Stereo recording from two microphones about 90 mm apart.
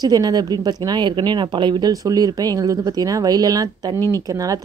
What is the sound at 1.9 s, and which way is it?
Speech, 40° right (ahead or behind).